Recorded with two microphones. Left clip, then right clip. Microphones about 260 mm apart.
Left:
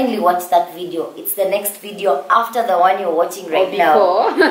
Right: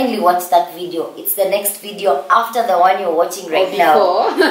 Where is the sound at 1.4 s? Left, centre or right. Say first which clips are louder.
Right 1 dB; centre.